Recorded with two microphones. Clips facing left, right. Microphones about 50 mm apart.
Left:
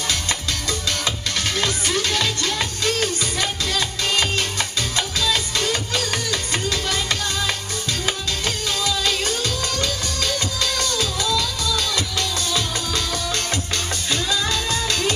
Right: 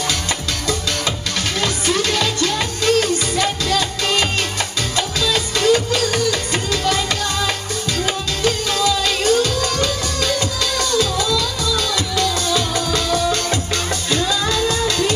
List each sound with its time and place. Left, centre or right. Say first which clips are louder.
1.6 s music: right 5 dB; right
5.3 s music: right 10 dB; right
8.5 s music: right 7 dB; right